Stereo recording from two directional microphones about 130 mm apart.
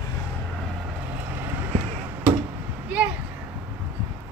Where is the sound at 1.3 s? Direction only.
15° right (ahead or behind).